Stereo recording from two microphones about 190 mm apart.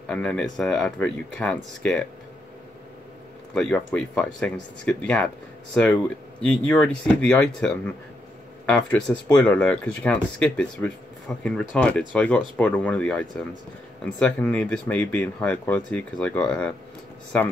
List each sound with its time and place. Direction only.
0.0 s speech: 5° left (ahead or behind)
3.5 s speech: 5° left (ahead or behind)